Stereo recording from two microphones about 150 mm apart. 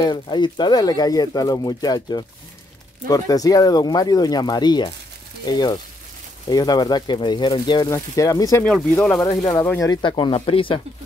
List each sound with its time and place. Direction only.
0.0 s speech: 30° left (ahead or behind)